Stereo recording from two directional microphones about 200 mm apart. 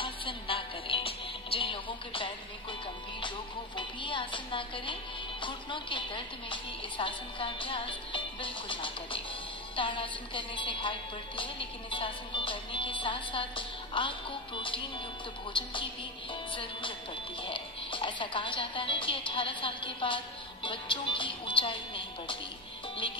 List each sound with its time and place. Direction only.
0.0 s music: 25° left (ahead or behind)
3.2 s a woman's voice: 25° left (ahead or behind)
17.4 s a woman's voice: 25° left (ahead or behind)